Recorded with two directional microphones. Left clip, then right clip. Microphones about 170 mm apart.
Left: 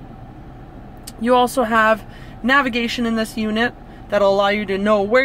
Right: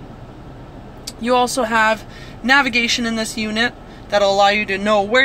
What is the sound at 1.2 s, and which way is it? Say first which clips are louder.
Speech: left 1 dB; 35° left (ahead or behind).